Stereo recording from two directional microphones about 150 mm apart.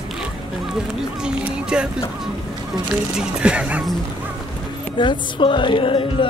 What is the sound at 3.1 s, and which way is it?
Music, 5° right (ahead or behind).